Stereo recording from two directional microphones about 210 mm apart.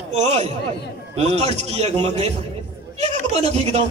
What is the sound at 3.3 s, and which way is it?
Speech, 30° right (ahead or behind).